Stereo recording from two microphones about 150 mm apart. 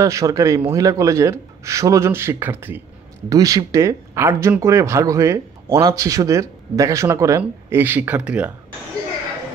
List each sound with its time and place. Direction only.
0.0 s speech: 20° right (ahead or behind)